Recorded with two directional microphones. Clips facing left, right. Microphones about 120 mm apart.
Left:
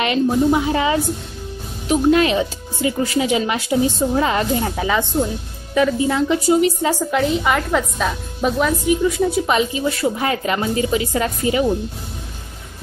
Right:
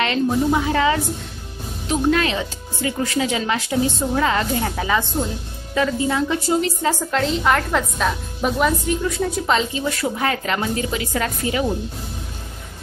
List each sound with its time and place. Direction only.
0.0 s a woman's voice: 10° left (ahead or behind)
8.8 s a woman's voice: 10° left (ahead or behind)